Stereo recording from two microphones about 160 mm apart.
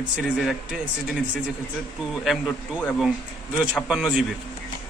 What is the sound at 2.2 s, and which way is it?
Speech, 5° right (ahead or behind).